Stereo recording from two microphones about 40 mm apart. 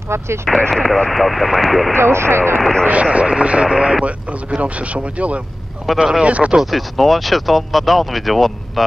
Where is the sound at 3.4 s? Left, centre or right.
Right.